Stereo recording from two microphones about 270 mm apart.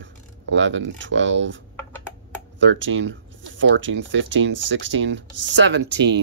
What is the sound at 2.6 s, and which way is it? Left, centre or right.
Speech, right.